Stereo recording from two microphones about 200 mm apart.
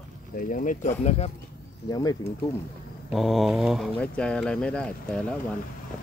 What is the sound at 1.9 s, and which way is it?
Speech, 20° left (ahead or behind).